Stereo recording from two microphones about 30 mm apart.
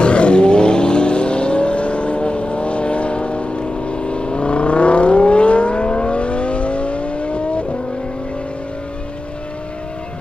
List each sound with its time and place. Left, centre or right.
0.0 s vehicle: left